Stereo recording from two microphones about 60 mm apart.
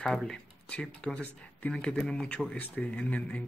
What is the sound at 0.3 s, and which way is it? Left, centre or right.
Speech, centre.